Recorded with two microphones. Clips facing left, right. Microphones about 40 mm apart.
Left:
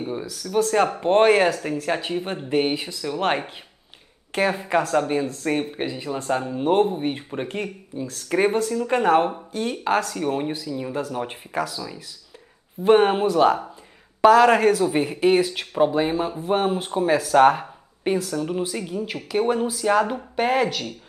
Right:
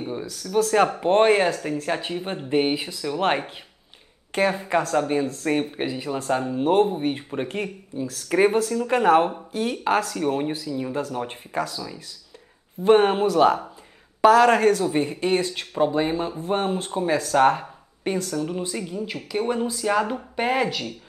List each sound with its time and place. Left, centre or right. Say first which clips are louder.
0.2 s speech: right 1 dB; centre
0.7 s speech: right 1 dB; centre
4.6 s speech: left 1 dB; centre
12.8 s speech: even; centre